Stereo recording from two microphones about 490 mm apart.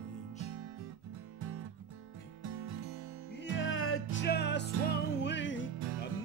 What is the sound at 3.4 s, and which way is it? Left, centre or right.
Music, left.